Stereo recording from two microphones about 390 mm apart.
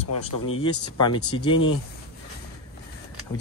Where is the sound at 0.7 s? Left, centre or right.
Left.